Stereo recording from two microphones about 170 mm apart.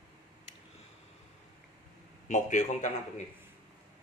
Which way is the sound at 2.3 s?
45° left (ahead or behind).